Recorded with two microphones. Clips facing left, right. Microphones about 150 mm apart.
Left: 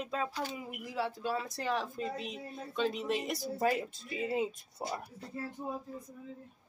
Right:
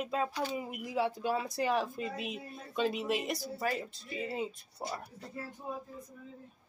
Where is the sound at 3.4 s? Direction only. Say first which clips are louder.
Left 4 dB; 20° left (ahead or behind).